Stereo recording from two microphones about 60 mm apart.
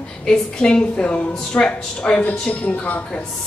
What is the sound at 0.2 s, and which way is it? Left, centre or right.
Speech, centre.